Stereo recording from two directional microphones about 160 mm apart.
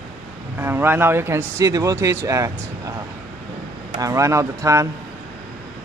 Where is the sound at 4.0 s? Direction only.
20° right (ahead or behind).